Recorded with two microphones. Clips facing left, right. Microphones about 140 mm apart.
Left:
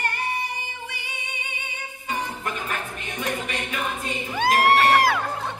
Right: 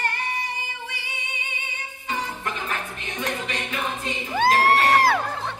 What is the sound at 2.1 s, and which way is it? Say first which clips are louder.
Music: even; 10° left (ahead or behind).